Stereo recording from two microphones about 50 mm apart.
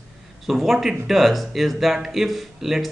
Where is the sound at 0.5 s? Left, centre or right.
Centre.